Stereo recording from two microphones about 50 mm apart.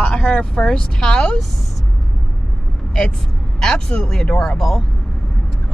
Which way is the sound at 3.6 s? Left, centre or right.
Centre.